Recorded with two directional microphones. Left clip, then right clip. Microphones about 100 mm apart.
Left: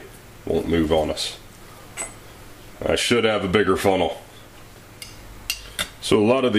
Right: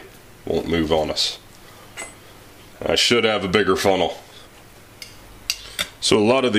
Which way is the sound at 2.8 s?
35° right (ahead or behind).